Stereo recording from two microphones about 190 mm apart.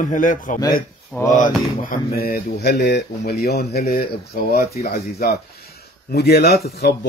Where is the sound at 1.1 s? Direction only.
20° left (ahead or behind).